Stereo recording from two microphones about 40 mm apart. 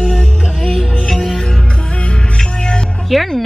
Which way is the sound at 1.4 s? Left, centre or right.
Centre.